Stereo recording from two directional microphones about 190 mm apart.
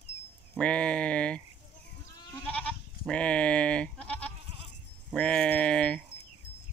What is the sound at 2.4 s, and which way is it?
Goat, 5° left (ahead or behind).